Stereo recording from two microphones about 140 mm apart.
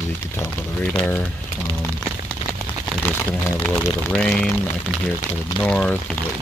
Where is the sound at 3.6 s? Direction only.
10° left (ahead or behind).